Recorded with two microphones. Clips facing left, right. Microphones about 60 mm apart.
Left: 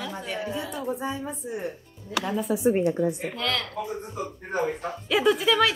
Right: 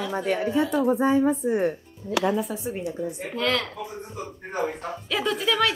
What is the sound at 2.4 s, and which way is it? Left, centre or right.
Speech, centre.